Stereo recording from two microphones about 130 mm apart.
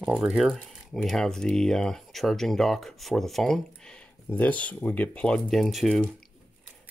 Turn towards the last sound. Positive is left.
turn(degrees=0)  # may be behind; listen again after turning